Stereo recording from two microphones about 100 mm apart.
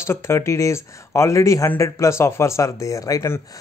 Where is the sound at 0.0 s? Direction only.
25° left (ahead or behind).